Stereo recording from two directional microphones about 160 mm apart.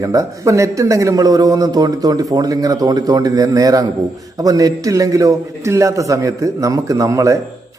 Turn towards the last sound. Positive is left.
turn(degrees=-20)  # may be behind; listen again after turning